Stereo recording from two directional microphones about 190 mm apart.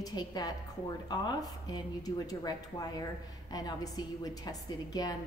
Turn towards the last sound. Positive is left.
turn(degrees=20)  # may be behind; listen again after turning